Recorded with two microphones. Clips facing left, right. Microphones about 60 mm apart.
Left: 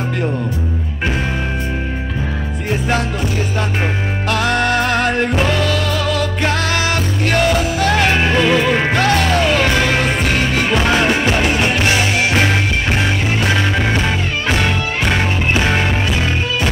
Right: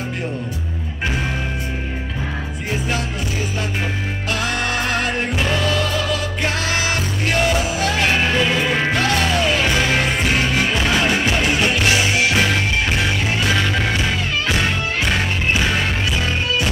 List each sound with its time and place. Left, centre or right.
4.3 s music: left
8.7 s music: left
13.9 s music: left